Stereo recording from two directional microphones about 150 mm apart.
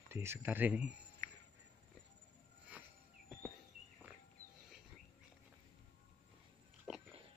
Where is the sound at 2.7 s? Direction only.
10° right (ahead or behind).